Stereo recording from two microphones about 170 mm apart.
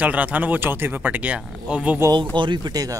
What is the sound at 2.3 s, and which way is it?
Speech, 25° right (ahead or behind).